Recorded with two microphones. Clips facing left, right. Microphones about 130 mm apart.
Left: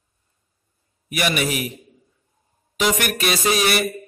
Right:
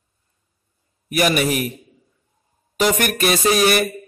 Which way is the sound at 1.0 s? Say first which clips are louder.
Right 4 dB; 45° right (ahead or behind).